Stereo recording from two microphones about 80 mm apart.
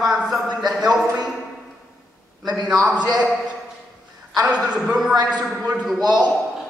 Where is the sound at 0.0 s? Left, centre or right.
Centre.